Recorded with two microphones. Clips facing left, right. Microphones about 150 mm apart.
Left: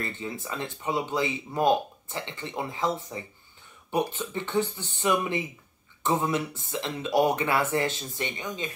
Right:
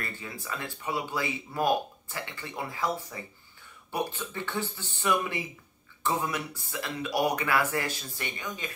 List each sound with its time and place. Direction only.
0.0 s speech: 25° left (ahead or behind)